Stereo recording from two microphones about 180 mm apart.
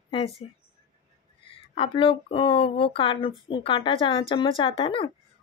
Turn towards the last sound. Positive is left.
turn(degrees=30)  # may be behind; listen again after turning